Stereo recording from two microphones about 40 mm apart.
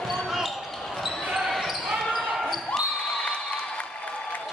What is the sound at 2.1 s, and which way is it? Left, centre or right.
Basketball bounce, centre.